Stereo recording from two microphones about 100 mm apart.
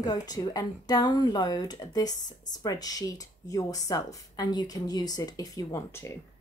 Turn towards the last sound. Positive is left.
turn(degrees=35)  # may be behind; listen again after turning